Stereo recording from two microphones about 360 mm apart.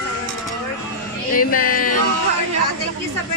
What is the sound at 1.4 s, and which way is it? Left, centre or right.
Speech, left.